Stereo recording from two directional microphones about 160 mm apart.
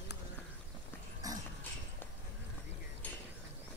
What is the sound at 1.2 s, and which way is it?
Dog, 25° right (ahead or behind).